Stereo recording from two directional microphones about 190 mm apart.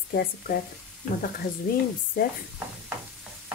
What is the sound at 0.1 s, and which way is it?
Speech, 55° left (ahead or behind).